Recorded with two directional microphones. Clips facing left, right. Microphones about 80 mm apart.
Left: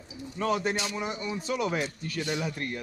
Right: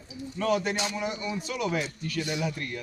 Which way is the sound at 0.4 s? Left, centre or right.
Left.